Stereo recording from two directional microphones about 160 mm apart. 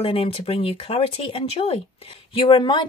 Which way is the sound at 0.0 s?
35° left (ahead or behind).